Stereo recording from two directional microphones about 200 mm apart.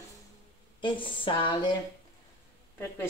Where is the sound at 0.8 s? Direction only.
25° left (ahead or behind).